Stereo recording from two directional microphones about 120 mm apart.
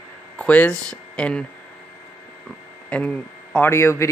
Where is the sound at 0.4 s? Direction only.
10° left (ahead or behind).